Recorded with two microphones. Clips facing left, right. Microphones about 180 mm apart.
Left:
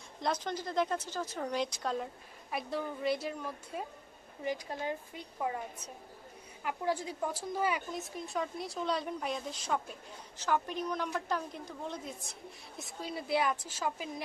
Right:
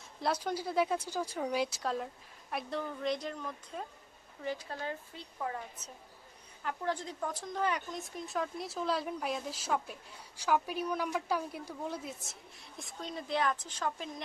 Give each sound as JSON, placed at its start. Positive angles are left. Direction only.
{"t": 0.2, "sound": "a woman's voice", "side_deg": -5}